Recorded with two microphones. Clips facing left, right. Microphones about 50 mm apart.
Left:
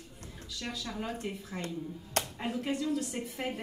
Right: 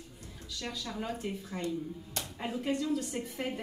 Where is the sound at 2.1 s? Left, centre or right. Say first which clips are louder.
Left 9 dB; left.